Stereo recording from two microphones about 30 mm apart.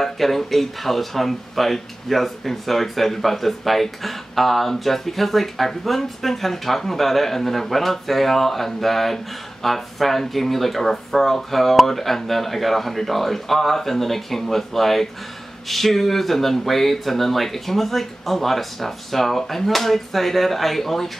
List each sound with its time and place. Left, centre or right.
0.0 s speech: centre